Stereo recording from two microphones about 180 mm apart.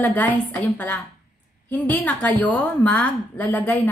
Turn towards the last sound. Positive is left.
turn(degrees=10)  # may be behind; listen again after turning